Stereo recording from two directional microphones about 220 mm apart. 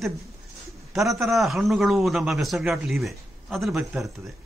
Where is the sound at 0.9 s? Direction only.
Centre (ahead or behind).